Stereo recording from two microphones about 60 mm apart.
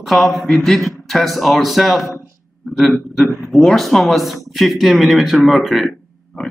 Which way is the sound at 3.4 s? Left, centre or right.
Centre.